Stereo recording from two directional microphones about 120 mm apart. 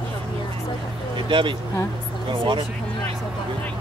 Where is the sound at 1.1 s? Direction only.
45° right (ahead or behind).